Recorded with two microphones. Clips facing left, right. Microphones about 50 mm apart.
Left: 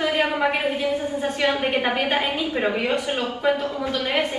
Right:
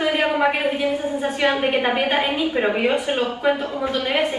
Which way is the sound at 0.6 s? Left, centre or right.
Right.